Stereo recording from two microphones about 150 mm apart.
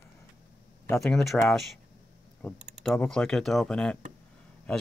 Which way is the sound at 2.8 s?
5° left (ahead or behind).